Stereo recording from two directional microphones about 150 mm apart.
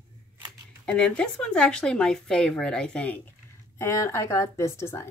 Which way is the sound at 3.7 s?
20° left (ahead or behind).